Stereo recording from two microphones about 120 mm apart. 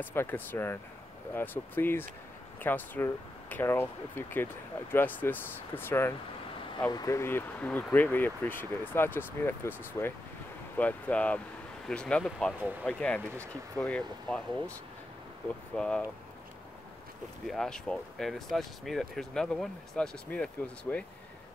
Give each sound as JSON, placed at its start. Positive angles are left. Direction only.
{"t": 0.0, "sound": "speech", "side_deg": 20}
{"t": 15.7, "sound": "speech", "side_deg": 5}
{"t": 17.5, "sound": "speech", "side_deg": 5}